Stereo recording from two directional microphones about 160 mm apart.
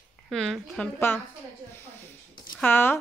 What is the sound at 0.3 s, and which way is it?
Speech, 5° left (ahead or behind).